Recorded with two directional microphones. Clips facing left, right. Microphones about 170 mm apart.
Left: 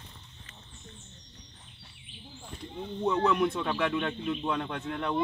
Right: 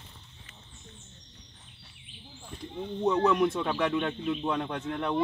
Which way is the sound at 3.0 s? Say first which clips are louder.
Right 2 dB; 35° right (ahead or behind).